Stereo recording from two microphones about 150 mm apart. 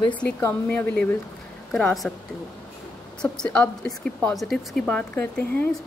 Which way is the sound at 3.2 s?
5° left (ahead or behind).